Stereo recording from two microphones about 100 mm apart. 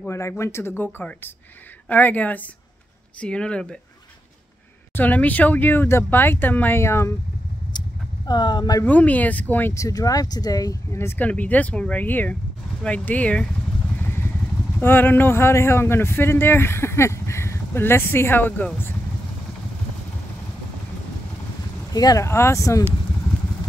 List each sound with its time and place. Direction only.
0.1 s a man's voice: 25° left (ahead or behind)
1.9 s speech: 15° left (ahead or behind)
4.9 s a man's voice: 15° left (ahead or behind)
7.7 s vehicle: 45° left (ahead or behind)
8.3 s speech: 45° left (ahead or behind)
8.8 s speech: 15° left (ahead or behind)
9.8 s speech: 35° left (ahead or behind); by 13.5 s 15° left (ahead or behind)
14.0 s vehicle: 25° left (ahead or behind)
14.8 s a man's voice: 20° left (ahead or behind)
21.9 s speech: 35° left (ahead or behind)